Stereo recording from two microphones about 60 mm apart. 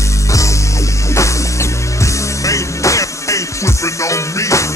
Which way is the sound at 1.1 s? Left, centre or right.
Left.